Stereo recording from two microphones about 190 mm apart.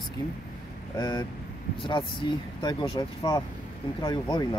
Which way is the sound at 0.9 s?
20° left (ahead or behind).